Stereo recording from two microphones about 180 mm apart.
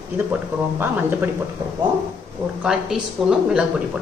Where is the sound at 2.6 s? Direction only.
5° right (ahead or behind).